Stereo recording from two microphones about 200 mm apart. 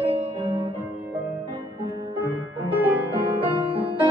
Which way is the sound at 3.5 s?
25° right (ahead or behind).